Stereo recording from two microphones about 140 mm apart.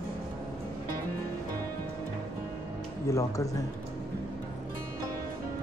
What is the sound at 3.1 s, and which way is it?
Speech, 25° left (ahead or behind).